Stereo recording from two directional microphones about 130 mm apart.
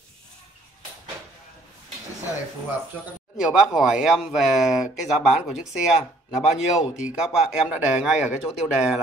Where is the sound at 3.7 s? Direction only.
5° right (ahead or behind).